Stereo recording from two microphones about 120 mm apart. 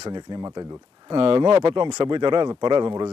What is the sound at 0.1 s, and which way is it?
Speech, 40° right (ahead or behind).